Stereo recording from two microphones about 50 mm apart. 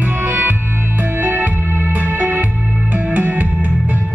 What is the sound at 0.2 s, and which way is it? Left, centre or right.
Music, right.